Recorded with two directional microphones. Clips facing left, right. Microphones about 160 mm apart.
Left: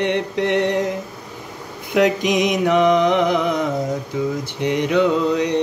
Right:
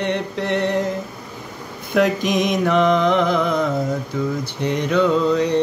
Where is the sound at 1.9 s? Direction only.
20° left (ahead or behind).